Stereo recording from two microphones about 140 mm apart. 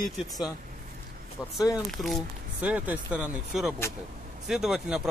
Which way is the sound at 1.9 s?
Centre (ahead or behind).